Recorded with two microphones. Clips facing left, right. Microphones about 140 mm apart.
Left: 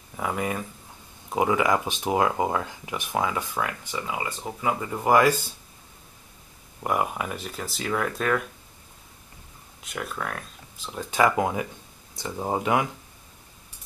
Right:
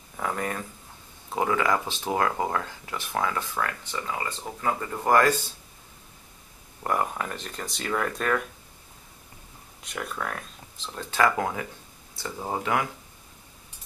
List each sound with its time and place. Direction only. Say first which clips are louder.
0.2 s speech: left 2 dB; 10° left (ahead or behind)
6.8 s speech: left 1 dB; 10° left (ahead or behind)
9.8 s speech: left 1 dB; centre (ahead or behind)
10.9 s speech: left 2 dB; 15° left (ahead or behind)